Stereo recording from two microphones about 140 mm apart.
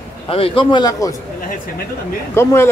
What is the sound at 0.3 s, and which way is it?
Speech, 40° left (ahead or behind).